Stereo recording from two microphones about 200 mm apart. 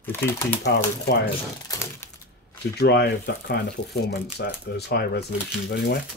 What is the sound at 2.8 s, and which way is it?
Speech, 55° left (ahead or behind).